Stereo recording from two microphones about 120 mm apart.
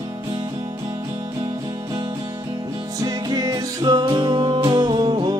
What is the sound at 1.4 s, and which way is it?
Music, 40° right (ahead or behind).